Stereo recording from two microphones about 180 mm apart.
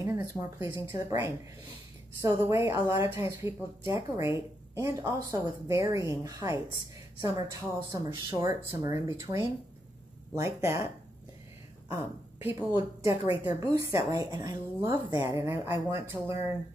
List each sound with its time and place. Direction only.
0.0 s a woman's voice: 15° right (ahead or behind)
10.3 s speech: 15° right (ahead or behind)
12.4 s a woman's voice: 15° right (ahead or behind)